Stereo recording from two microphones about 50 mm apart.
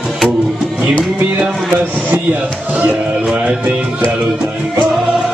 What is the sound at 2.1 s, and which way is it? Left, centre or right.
Speech, right.